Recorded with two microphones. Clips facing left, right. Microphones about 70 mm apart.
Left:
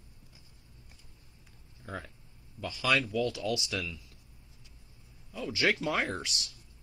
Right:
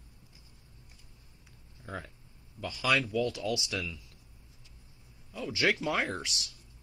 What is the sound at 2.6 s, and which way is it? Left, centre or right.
Speech, centre.